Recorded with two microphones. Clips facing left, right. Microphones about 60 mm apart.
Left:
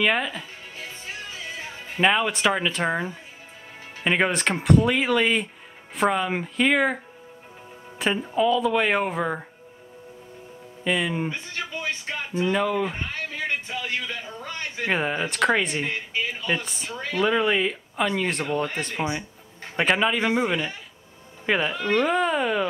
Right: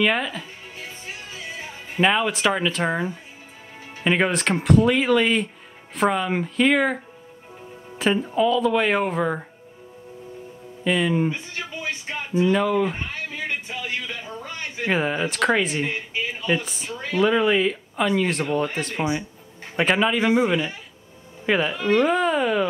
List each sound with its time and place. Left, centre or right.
0.0 s speech: centre
0.7 s music: centre
2.0 s speech: centre
8.0 s speech: centre
10.8 s speech: centre
12.4 s speech: centre
13.1 s a sound: centre
14.9 s speech: centre
15.9 s speech: centre
16.4 s speech: centre